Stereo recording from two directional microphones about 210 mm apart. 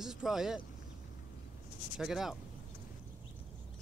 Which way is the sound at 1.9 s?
Centre (ahead or behind).